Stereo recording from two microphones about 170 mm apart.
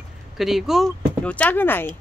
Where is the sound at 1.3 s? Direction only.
10° left (ahead or behind).